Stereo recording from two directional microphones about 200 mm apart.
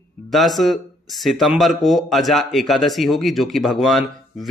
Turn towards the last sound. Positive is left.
turn(degrees=0)  # may be behind; listen again after turning